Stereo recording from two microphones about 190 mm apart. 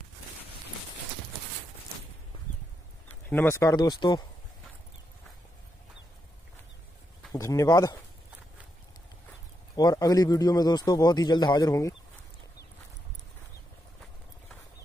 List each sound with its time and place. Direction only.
3.3 s a man's voice: 10° left (ahead or behind)
7.3 s a man's voice: 20° left (ahead or behind)
9.8 s a man's voice: 20° left (ahead or behind)